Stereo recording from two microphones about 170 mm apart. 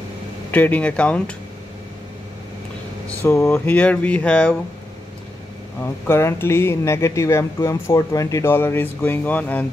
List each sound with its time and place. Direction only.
0.5 s speech: 10° left (ahead or behind)
3.1 s speech: 15° left (ahead or behind)
5.8 s speech: 15° left (ahead or behind)